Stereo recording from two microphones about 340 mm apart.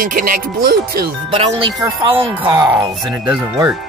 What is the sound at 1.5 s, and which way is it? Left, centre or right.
Speech, centre.